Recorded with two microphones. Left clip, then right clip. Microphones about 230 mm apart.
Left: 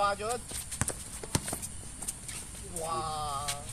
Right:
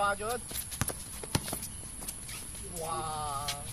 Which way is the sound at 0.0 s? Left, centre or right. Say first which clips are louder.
Left 1 dB; left.